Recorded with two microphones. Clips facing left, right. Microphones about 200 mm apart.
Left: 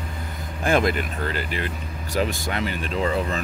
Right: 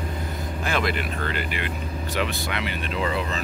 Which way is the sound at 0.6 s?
50° left (ahead or behind).